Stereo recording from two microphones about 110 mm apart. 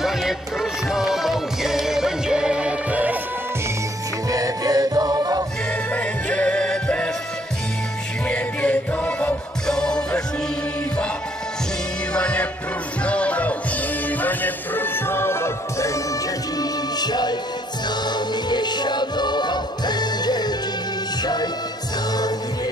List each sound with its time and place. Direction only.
0.0 s music: 5° right (ahead or behind)
4.3 s music: 35° right (ahead or behind)
5.9 s music: 10° left (ahead or behind)
8.3 s music: 10° left (ahead or behind)
12.1 s music: 10° left (ahead or behind); by 16.0 s 25° left (ahead or behind)
16.5 s music: 40° left (ahead or behind)